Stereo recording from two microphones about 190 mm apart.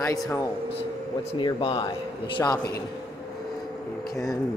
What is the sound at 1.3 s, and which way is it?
Speech, 25° left (ahead or behind).